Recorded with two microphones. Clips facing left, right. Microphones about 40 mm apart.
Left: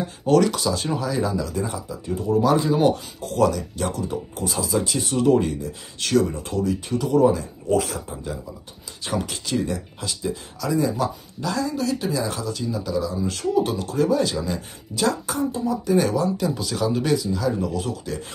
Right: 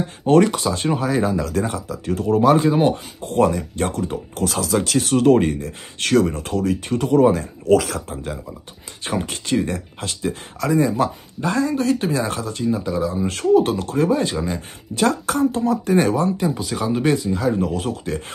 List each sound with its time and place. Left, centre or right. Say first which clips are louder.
0.2 s speech: right 3 dB; right
1.5 s speech: right 4 dB; right
2.7 s speech: right 1 dB; right
4.4 s speech: right 4 dB; right
7.6 s speech: right 6 dB; right
9.0 s speech: right 2 dB; right
15.0 s speech: right 4 dB; right
16.3 s speech: right 2 dB; right
17.1 s speech: right 3 dB; right